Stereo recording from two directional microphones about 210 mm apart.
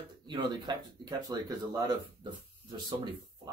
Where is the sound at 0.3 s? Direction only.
20° right (ahead or behind).